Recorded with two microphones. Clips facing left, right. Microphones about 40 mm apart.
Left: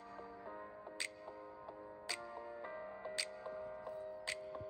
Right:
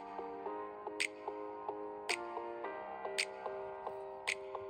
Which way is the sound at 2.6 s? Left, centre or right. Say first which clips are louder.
Right 4 dB; right.